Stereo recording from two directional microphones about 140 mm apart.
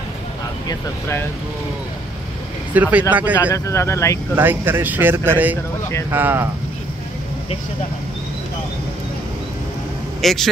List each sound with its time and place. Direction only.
0.7 s speech: 20° left (ahead or behind)
2.7 s a man's voice: 10° right (ahead or behind)
3.5 s speech: 20° left (ahead or behind)
4.4 s a man's voice: 15° right (ahead or behind)
10.2 s a man's voice: centre (ahead or behind)